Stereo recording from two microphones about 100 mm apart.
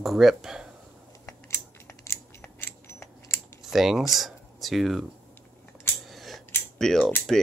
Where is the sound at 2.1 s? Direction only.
30° left (ahead or behind).